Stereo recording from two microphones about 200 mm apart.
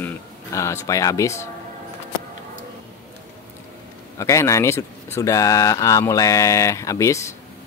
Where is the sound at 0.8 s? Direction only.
15° left (ahead or behind).